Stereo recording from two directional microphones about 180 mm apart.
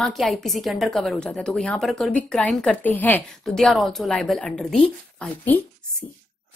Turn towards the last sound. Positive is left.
turn(degrees=5)  # may be behind; listen again after turning